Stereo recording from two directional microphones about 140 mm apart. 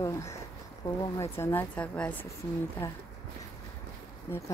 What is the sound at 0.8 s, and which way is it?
A woman's voice, 20° left (ahead or behind).